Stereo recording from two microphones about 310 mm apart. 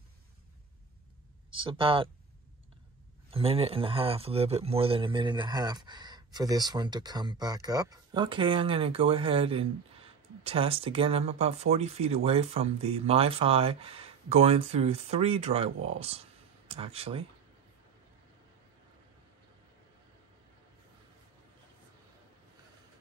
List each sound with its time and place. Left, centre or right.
1.5 s a man's voice: centre
3.3 s a man's voice: centre